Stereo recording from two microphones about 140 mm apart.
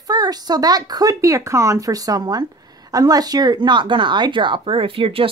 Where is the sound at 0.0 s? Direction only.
30° right (ahead or behind).